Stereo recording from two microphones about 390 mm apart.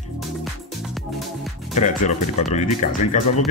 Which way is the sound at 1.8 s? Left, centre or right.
Centre.